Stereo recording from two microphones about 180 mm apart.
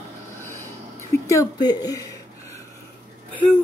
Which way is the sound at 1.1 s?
15° left (ahead or behind).